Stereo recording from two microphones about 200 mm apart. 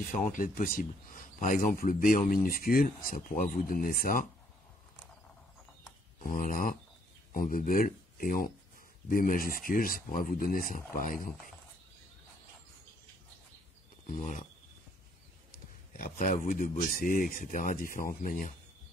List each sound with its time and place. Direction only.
0.1 s speech: 40° left (ahead or behind)
6.1 s speech: 40° left (ahead or behind)
14.0 s speech: 40° left (ahead or behind)
16.0 s speech: 40° left (ahead or behind)